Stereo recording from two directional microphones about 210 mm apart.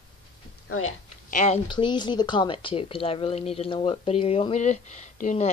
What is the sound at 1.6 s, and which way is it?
A woman's voice, 20° left (ahead or behind).